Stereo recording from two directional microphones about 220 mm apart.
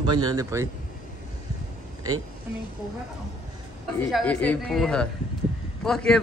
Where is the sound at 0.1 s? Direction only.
20° right (ahead or behind).